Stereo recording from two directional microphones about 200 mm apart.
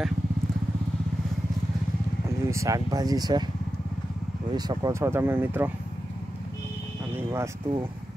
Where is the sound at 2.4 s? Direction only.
15° right (ahead or behind).